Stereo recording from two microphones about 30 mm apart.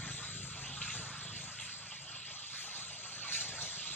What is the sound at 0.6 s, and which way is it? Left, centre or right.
Vehicle, left.